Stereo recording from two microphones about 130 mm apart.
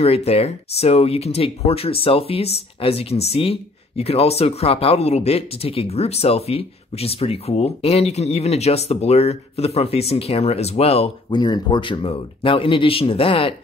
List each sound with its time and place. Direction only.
0.0 s speech: 50° left (ahead or behind)
11.2 s speech: 35° left (ahead or behind)